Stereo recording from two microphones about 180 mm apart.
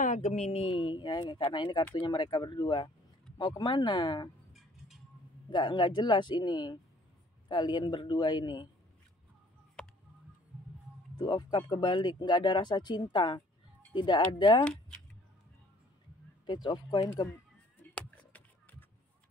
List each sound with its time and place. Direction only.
0.0 s speech: 40° left (ahead or behind); by 4.3 s 25° left (ahead or behind)
5.5 s speech: 25° left (ahead or behind)
9.8 s a sound: 5° left (ahead or behind)
11.1 s speech: 25° left (ahead or behind)
14.6 s speech: 5° left (ahead or behind)
16.4 s speech: 25° left (ahead or behind)
17.9 s a sound: 10° left (ahead or behind)